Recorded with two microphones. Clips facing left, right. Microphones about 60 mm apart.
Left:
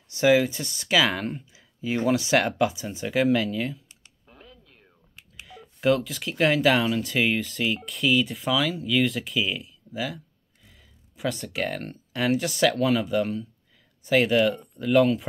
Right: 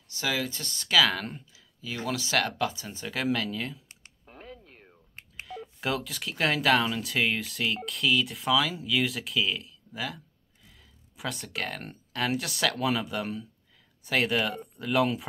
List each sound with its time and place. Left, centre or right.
0.1 s speech: left
1.5 s speech: left; by 3.8 s centre
3.9 s computer keyboard: right
5.2 s telephone dialing: right
5.5 s speech: centre